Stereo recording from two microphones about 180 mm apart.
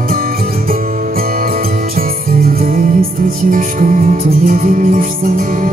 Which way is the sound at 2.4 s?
55° right (ahead or behind).